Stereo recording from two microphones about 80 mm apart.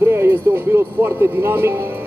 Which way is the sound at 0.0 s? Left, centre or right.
Right.